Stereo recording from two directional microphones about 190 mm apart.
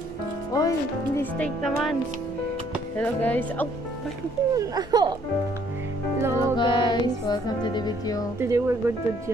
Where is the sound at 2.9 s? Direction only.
10° left (ahead or behind).